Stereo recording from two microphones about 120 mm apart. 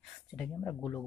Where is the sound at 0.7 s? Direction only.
10° left (ahead or behind).